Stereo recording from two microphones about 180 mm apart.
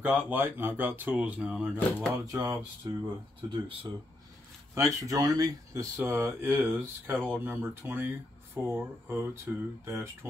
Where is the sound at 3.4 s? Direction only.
30° right (ahead or behind).